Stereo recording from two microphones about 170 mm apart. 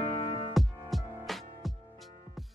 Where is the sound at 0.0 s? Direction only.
30° left (ahead or behind).